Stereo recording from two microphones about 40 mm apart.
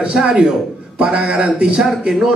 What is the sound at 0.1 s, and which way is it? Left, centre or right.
Speech, centre.